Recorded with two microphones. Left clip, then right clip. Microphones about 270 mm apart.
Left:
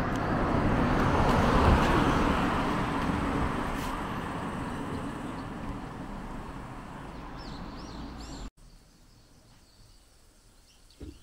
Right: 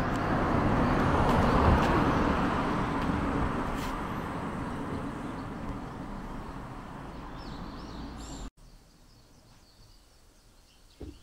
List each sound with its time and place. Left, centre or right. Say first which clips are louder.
0.0 s vehicle: even; centre
1.3 s vehicle: left 1 dB; left
2.0 s vehicle: left 1 dB; left